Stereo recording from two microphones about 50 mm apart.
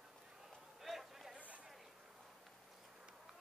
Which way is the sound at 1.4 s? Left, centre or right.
Right.